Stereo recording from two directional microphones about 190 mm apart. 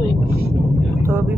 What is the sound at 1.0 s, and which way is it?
Vehicle, 10° right (ahead or behind).